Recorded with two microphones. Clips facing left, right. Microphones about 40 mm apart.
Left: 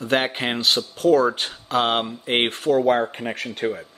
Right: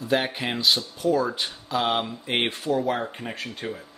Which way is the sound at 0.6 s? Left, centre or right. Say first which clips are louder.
Left 3 dB; left.